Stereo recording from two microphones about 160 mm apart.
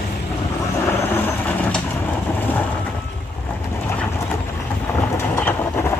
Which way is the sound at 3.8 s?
15° left (ahead or behind).